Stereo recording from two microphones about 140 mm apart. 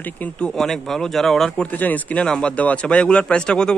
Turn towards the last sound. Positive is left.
turn(degrees=5)  # may be behind; listen again after turning